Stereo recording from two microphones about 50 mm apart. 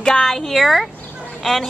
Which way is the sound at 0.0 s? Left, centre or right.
Centre.